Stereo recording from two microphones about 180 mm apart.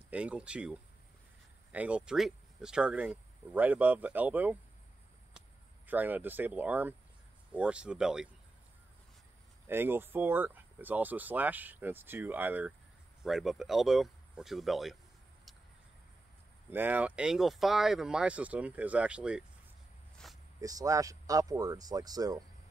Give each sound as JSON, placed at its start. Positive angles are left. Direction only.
{"t": 0.1, "sound": "speech", "side_deg": -5}
{"t": 5.9, "sound": "speech", "side_deg": -10}
{"t": 9.7, "sound": "speech", "side_deg": -10}
{"t": 16.7, "sound": "speech", "side_deg": -10}
{"t": 20.2, "sound": "zipper", "side_deg": 0}
{"t": 20.6, "sound": "speech", "side_deg": -20}